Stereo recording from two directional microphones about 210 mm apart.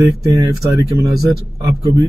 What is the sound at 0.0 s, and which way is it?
Speech, 15° right (ahead or behind).